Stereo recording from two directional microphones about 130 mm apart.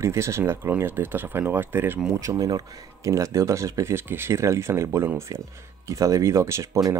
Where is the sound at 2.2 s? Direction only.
25° right (ahead or behind).